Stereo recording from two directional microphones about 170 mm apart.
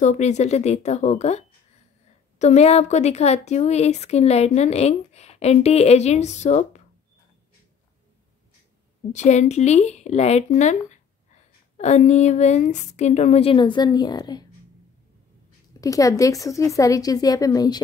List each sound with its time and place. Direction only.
0.0 s speech: 45° left (ahead or behind)
9.1 s speech: 45° left (ahead or behind); by 14.4 s 25° left (ahead or behind)
15.8 s speech: 20° left (ahead or behind)